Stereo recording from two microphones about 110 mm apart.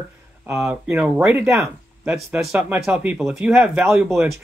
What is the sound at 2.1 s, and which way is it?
Speech, 5° right (ahead or behind).